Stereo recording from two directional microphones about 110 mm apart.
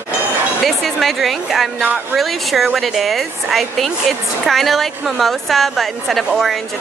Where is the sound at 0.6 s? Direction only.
Centre (ahead or behind).